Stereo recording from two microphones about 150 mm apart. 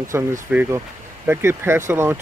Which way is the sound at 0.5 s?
10° right (ahead or behind).